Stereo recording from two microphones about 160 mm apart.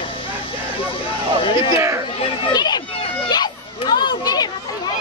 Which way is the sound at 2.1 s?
35° left (ahead or behind).